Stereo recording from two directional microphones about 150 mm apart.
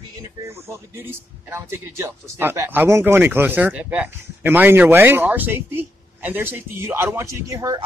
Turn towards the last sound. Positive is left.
turn(degrees=-20)  # may be behind; listen again after turning